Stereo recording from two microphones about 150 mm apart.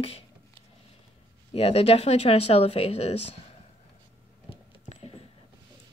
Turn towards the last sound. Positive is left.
turn(degrees=40)  # may be behind; listen again after turning